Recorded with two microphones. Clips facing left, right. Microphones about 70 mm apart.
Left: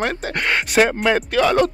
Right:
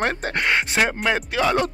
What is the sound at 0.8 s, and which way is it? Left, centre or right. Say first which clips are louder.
Speech: left 8 dB; centre.